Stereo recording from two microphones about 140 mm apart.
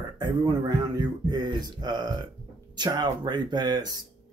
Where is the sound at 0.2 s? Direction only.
30° right (ahead or behind).